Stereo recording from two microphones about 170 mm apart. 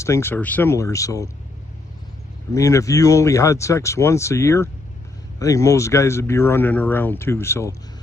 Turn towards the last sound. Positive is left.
turn(degrees=15)  # may be behind; listen again after turning